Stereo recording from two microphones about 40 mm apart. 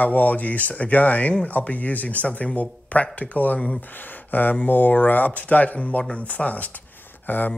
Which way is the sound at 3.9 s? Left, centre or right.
Left.